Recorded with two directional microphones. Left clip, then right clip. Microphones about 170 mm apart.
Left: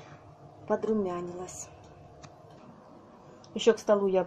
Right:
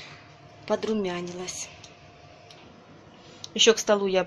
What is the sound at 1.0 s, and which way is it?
Speech, 5° right (ahead or behind).